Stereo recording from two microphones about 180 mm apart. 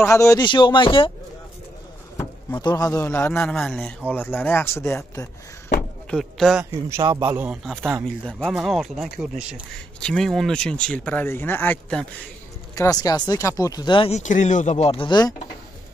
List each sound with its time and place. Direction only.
0.0 s speech: 15° left (ahead or behind)
2.1 s speech: 20° left (ahead or behind)
5.8 s a sound: 5° left (ahead or behind)
6.6 s a man's voice: 15° right (ahead or behind)
7.6 s speech: centre (ahead or behind)
12.7 s speech: 20° left (ahead or behind)